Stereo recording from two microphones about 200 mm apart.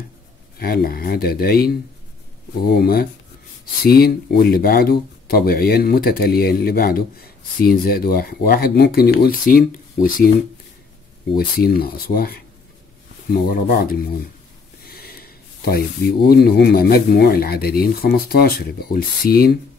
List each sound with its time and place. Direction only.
0.6 s speech: 50° left (ahead or behind)
11.3 s speech: 50° left (ahead or behind)
14.9 s a sound: 50° left (ahead or behind)
16.3 s speech: 50° left (ahead or behind)